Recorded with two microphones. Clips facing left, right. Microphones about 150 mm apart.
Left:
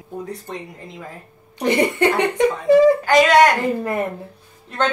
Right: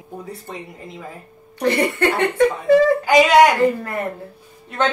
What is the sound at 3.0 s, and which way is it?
Speech, 10° right (ahead or behind).